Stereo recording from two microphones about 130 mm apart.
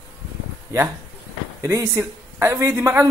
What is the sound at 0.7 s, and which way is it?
Speech, 20° right (ahead or behind).